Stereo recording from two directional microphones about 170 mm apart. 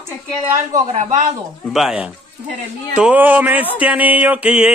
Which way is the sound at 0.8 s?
45° right (ahead or behind).